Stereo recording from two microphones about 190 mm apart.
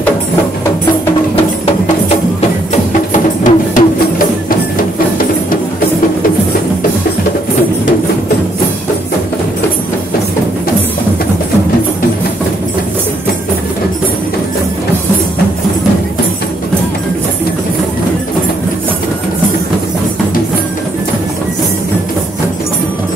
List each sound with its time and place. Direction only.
2.7 s music: 40° left (ahead or behind)